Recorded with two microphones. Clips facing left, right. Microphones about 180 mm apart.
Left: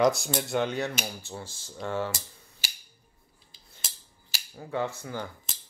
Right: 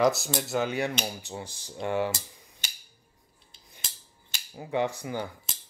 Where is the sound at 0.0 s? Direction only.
Centre (ahead or behind).